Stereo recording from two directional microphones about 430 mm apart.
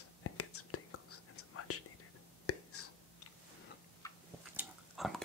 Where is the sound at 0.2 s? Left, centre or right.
Left.